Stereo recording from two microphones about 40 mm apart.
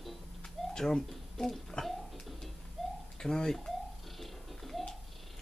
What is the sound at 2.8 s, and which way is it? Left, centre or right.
Bird, centre.